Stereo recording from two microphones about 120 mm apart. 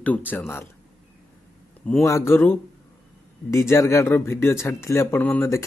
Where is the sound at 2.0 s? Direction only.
25° left (ahead or behind).